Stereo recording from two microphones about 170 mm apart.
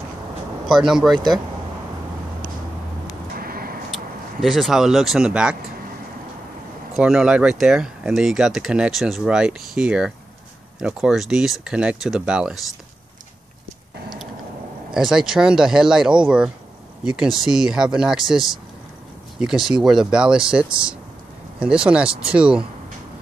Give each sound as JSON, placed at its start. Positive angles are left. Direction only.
{"t": 0.7, "sound": "speech", "side_deg": 0}
{"t": 3.3, "sound": "a sound", "side_deg": -60}
{"t": 3.9, "sound": "speech", "side_deg": 0}
{"t": 6.9, "sound": "speech", "side_deg": -5}
{"t": 15.0, "sound": "speech", "side_deg": -5}